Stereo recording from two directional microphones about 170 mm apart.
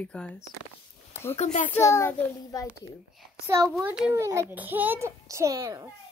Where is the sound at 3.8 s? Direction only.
10° right (ahead or behind).